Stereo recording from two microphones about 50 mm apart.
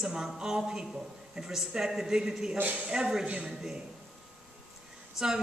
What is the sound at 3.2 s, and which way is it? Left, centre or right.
Speech, right.